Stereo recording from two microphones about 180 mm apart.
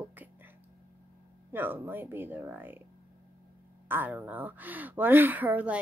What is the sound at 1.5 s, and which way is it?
A woman's voice, 10° right (ahead or behind).